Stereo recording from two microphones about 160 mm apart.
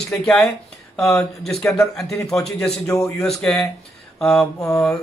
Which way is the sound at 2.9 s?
20° left (ahead or behind).